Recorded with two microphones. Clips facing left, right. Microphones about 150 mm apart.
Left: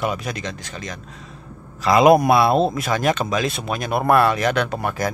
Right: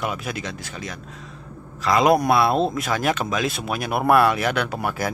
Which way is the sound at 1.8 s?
10° left (ahead or behind).